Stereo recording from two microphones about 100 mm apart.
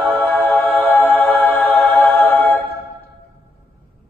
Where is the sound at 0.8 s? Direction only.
20° left (ahead or behind).